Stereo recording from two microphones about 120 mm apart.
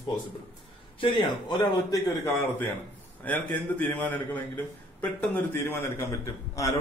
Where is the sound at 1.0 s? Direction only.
40° left (ahead or behind).